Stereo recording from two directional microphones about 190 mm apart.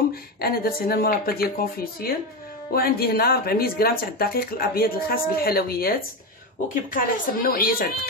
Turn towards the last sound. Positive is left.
turn(degrees=50)  # may be behind; listen again after turning